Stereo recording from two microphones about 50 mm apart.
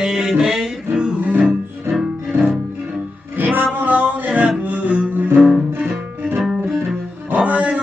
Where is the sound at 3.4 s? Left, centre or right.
Right.